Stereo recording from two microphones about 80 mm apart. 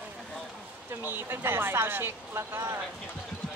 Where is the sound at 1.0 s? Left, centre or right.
Right.